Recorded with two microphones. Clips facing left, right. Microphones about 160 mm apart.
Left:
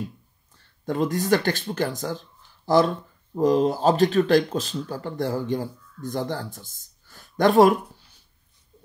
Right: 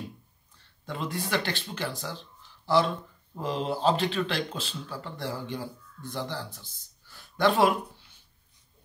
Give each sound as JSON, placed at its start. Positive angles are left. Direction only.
{"t": 0.8, "sound": "speech", "side_deg": 45}